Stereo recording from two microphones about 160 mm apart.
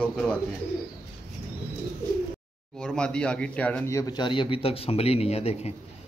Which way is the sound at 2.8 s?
5° left (ahead or behind).